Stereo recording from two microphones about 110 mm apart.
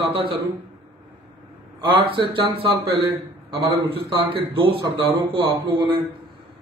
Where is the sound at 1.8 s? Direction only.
45° right (ahead or behind).